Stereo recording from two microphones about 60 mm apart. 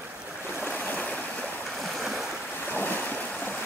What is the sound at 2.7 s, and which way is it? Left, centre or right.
Waves, left.